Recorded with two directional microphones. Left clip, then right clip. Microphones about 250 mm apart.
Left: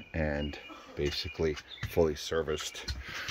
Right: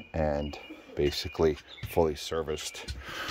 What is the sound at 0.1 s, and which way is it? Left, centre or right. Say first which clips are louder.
Speech: right 4 dB; centre.